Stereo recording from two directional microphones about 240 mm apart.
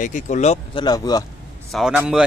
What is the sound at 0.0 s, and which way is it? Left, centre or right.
Speech, left.